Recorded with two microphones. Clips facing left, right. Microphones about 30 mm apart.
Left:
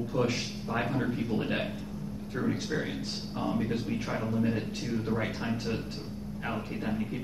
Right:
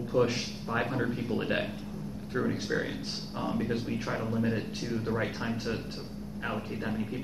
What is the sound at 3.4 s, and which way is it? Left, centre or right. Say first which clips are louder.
Speech: left 1 dB; centre.